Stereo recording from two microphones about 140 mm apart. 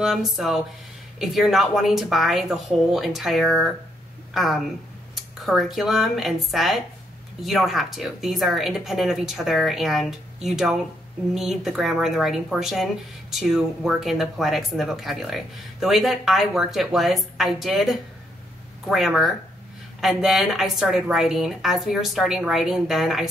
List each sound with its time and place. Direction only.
0.0 s speech: centre (ahead or behind)